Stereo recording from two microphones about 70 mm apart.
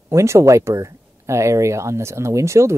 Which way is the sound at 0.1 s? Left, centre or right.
Right.